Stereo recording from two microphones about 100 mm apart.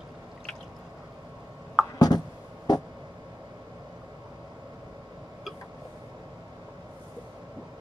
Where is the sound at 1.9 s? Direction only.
40° left (ahead or behind).